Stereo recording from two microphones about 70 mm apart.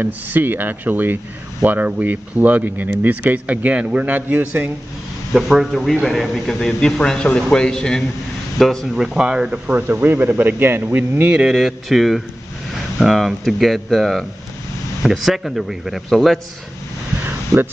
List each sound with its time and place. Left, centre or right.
0.0 s speech: right
5.3 s a man's voice: centre
9.0 s speech: centre
9.7 s speech: right
11.3 s a man's voice: centre